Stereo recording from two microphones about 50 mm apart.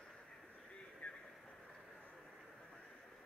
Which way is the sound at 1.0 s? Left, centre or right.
Left.